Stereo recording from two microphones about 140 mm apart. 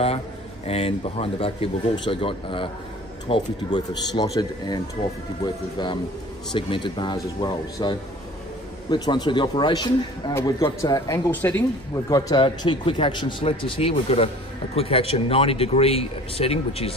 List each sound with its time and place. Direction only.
0.7 s speech: 45° left (ahead or behind)